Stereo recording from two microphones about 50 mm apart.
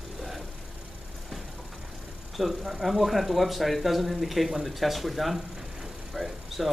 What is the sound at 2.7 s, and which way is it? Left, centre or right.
Speech, centre.